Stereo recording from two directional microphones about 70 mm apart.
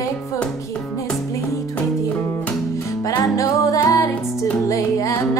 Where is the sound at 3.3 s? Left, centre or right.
Left.